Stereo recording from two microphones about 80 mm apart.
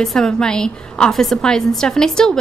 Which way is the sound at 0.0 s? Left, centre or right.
Centre.